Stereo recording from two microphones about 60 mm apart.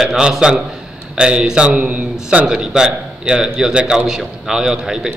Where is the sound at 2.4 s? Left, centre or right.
Centre.